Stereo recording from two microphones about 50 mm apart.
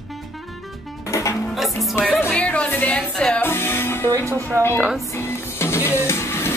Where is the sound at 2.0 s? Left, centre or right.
Left.